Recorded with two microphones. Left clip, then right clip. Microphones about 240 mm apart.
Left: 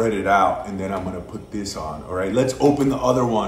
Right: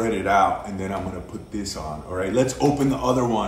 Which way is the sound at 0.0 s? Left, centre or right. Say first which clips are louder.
Left 2 dB; centre.